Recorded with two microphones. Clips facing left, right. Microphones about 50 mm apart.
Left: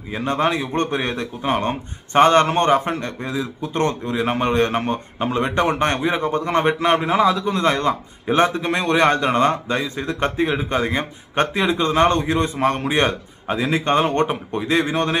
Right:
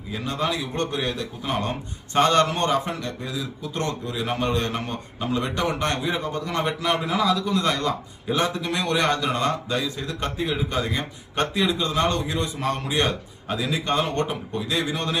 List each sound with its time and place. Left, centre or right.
0.1 s a man's voice: left